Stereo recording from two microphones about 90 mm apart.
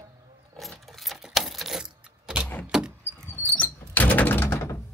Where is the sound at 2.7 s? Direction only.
10° right (ahead or behind).